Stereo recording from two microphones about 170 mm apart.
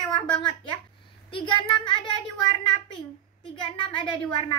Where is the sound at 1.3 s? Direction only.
30° left (ahead or behind).